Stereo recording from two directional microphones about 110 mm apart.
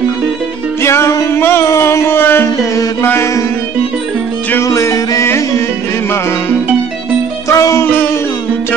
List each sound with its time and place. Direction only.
0.8 s a sound: 25° left (ahead or behind)
4.6 s music: 30° left (ahead or behind)
7.4 s music: 25° left (ahead or behind)